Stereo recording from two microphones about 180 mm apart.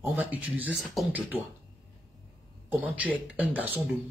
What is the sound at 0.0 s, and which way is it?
Speech, 10° right (ahead or behind).